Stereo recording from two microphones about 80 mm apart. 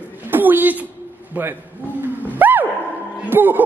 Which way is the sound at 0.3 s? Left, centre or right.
Right.